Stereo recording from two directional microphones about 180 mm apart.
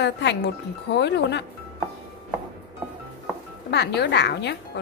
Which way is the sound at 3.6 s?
65° left (ahead or behind).